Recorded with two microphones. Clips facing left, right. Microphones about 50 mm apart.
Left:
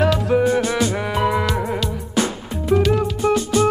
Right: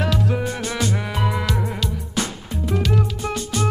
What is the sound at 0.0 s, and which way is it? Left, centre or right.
Music, left.